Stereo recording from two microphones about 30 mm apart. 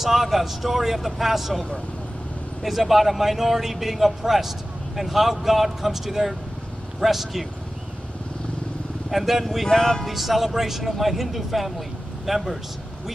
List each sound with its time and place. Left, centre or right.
0.0 s speech: centre
9.1 s speech: centre
9.7 s speech: centre
10.0 s speech: centre